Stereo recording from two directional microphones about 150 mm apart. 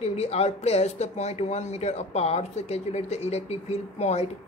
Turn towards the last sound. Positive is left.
turn(degrees=50)  # may be behind; listen again after turning